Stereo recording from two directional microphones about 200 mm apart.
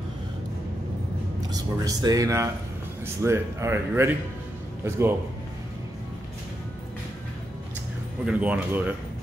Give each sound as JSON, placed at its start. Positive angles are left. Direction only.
{"t": 1.5, "sound": "speech", "side_deg": -20}
{"t": 8.3, "sound": "speech", "side_deg": -5}